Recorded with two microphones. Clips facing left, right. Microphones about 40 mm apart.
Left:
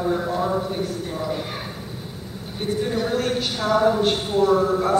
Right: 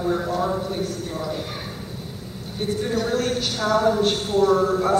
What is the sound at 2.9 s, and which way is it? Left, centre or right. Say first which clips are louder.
A woman's voice: right 2 dB; centre.